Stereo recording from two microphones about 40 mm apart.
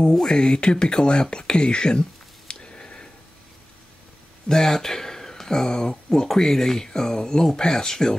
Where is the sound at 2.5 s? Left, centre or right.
Left.